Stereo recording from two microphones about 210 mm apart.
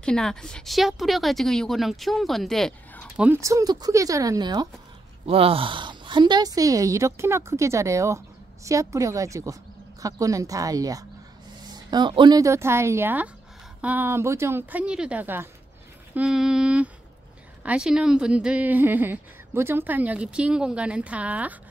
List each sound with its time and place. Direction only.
0.0 s speech: 5° left (ahead or behind)
3.2 s speech: 10° right (ahead or behind)